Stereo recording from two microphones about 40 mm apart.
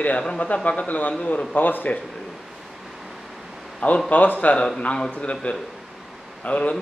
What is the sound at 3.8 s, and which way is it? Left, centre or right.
A man's voice, left.